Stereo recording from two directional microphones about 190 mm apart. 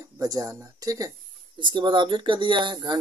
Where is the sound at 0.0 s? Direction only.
20° right (ahead or behind).